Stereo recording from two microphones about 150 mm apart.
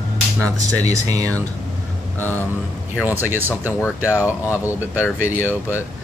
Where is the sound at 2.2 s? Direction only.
15° left (ahead or behind).